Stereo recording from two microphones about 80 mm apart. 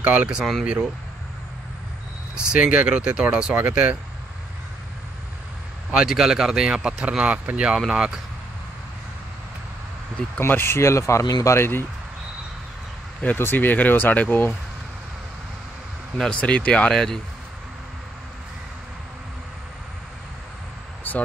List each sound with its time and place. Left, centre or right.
0.0 s speech: centre
0.4 s speech: centre
2.3 s speech: centre
5.9 s speech: centre
10.4 s speech: left
13.2 s speech: left
16.3 s speech: centre
21.0 s a sound: left